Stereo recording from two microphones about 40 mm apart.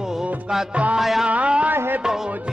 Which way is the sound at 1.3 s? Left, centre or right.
Right.